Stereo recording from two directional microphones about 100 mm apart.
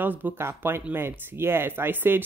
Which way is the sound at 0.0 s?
20° right (ahead or behind).